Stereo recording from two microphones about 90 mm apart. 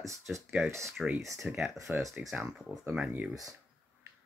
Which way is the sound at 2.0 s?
35° right (ahead or behind).